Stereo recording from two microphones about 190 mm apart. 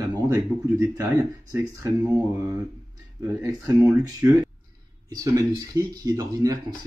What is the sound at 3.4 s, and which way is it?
Speech, 15° right (ahead or behind).